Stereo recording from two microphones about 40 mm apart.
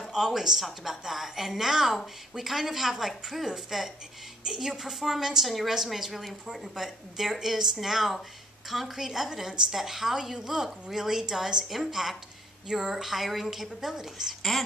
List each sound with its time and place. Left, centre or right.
0.0 s a woman's voice: centre
12.6 s a woman's voice: centre
12.9 s a woman's voice: centre